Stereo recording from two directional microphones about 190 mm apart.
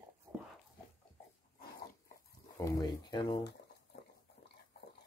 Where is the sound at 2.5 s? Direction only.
20° left (ahead or behind).